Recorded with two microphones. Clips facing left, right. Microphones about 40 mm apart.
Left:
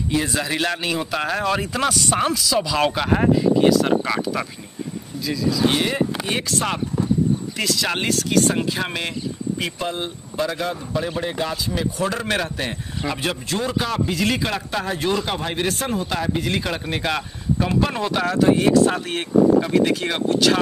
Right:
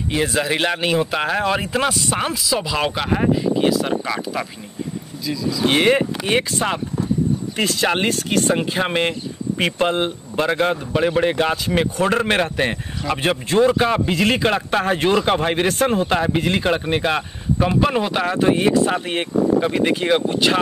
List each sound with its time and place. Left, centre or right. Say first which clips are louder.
0.1 s speech: right 3 dB; right; by 4.2 s centre
5.2 s speech: left 1 dB; centre
5.7 s speech: right 5 dB; right
7.5 s speech: right 3 dB; right
9.6 s speech: right 11 dB; right
17.0 s speech: right 3 dB; centre
20.1 s speech: right 2 dB; centre